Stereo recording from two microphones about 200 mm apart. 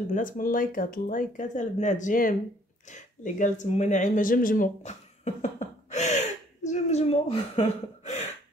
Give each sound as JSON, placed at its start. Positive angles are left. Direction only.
{"t": 0.1, "sound": "speech", "side_deg": 40}